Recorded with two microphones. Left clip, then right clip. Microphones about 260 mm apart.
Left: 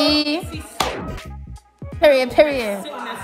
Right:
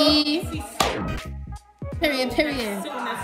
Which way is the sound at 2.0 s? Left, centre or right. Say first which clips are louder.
Left 9 dB; left.